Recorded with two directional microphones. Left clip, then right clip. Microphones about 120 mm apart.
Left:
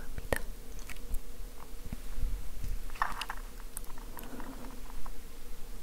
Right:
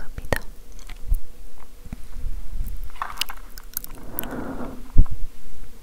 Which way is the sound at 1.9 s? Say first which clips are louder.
Right 7 dB; 10° right (ahead or behind).